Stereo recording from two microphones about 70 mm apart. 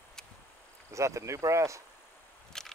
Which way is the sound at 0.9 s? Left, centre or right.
Right.